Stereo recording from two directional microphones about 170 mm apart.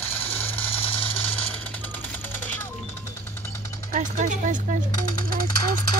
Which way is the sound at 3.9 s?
45° right (ahead or behind).